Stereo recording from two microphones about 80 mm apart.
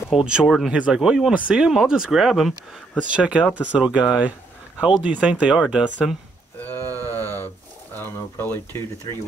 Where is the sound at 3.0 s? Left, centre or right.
Centre.